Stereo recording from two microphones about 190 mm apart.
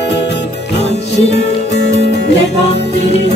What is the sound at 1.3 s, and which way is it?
Music, 65° left (ahead or behind).